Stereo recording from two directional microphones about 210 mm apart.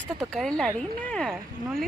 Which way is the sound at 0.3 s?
5° left (ahead or behind).